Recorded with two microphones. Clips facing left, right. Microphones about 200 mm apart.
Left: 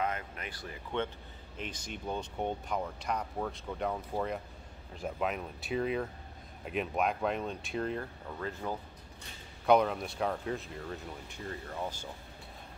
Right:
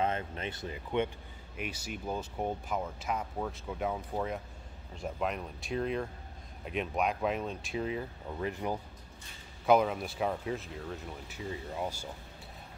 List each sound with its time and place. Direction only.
0.0 s speech: 25° right (ahead or behind); by 8.1 s 5° right (ahead or behind)
8.4 s speech: 15° right (ahead or behind)
9.7 s speech: 5° right (ahead or behind)